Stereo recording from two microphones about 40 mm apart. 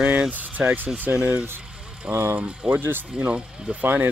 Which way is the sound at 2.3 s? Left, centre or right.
Right.